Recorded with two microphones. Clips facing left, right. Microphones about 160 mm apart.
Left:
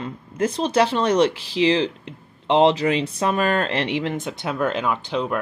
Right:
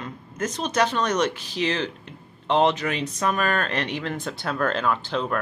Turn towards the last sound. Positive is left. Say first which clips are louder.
# left 1 dB
turn(degrees=15)  # may be behind; listen again after turning